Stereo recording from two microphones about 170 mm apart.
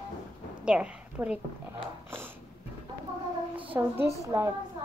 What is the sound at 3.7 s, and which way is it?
Speech, 15° right (ahead or behind).